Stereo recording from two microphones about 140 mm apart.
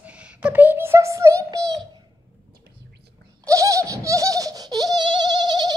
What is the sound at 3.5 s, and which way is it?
Baby laughter, 25° right (ahead or behind).